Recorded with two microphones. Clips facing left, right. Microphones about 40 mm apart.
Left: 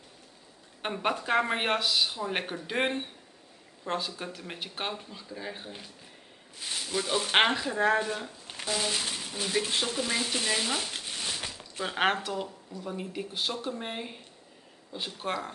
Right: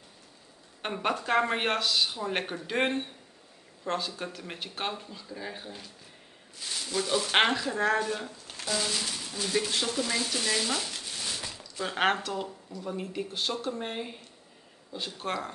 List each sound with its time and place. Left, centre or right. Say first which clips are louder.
0.8 s speech: even; centre
8.5 s a sound: left 1 dB; centre
8.8 s speech: left 1 dB; centre
11.8 s speech: even; centre